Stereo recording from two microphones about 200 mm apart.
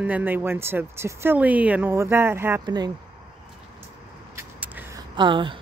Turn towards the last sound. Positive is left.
turn(degrees=-25)  # may be behind; listen again after turning